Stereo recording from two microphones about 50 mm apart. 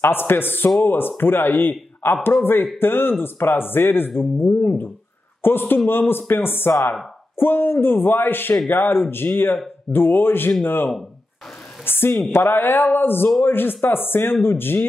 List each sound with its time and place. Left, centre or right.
0.0 s a woman's voice: left